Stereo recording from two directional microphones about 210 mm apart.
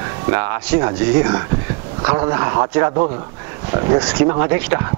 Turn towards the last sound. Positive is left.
turn(degrees=-15)  # may be behind; listen again after turning